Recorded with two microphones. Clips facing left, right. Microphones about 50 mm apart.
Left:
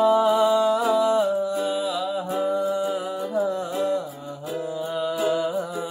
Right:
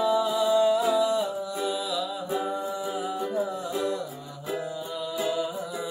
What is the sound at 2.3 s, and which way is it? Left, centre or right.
A capella, left.